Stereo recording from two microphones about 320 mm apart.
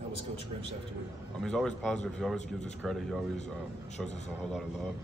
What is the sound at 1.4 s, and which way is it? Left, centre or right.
Speech, centre.